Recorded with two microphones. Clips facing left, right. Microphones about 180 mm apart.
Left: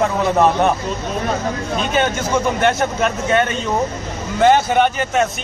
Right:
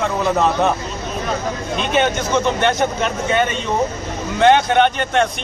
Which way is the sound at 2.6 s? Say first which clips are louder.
Left 1 dB; 5° left (ahead or behind).